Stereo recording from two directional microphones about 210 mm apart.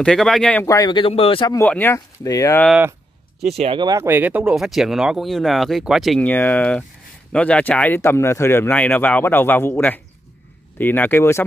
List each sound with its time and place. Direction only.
0.0 s speech: centre (ahead or behind); by 1.6 s 25° left (ahead or behind)
1.6 s speech: 10° left (ahead or behind)
3.4 s speech: 30° right (ahead or behind); by 11.4 s 10° left (ahead or behind)